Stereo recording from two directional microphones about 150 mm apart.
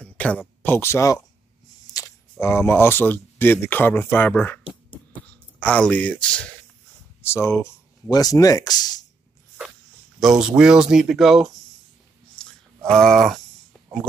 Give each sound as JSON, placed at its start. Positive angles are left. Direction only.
{"t": 0.0, "sound": "speech", "side_deg": 10}
{"t": 1.9, "sound": "camera", "side_deg": 25}
{"t": 2.4, "sound": "speech", "side_deg": 15}
{"t": 5.6, "sound": "speech", "side_deg": 10}
{"t": 7.2, "sound": "speech", "side_deg": 15}
{"t": 10.4, "sound": "speech", "side_deg": -5}
{"t": 12.4, "sound": "a sound", "side_deg": 5}